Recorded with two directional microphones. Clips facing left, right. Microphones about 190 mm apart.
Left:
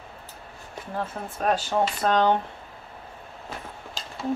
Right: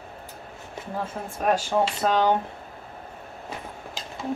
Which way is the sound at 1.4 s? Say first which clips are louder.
Right 1 dB; 10° right (ahead or behind).